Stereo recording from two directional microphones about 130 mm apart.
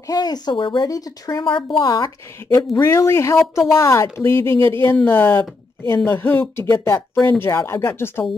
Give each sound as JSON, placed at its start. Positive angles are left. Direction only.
{"t": 0.0, "sound": "a woman's voice", "side_deg": 30}
{"t": 1.4, "sound": "a woman's voice", "side_deg": 40}
{"t": 2.8, "sound": "speech", "side_deg": 20}
{"t": 4.6, "sound": "speech", "side_deg": -45}
{"t": 4.9, "sound": "speech", "side_deg": 15}